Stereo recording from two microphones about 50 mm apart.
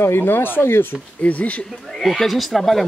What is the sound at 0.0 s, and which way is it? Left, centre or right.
Speech, left.